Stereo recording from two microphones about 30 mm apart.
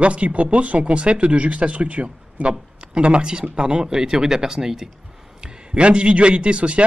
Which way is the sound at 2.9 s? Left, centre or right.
Right.